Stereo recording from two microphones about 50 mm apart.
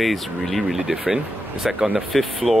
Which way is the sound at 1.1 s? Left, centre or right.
Centre.